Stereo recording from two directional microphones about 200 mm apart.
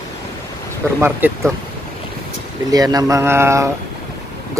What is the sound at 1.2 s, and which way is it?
Speech, 10° right (ahead or behind).